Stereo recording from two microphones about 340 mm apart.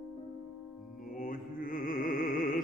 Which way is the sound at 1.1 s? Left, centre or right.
Left.